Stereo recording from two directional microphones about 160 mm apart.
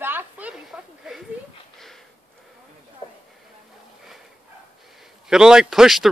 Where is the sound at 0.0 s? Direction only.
10° right (ahead or behind).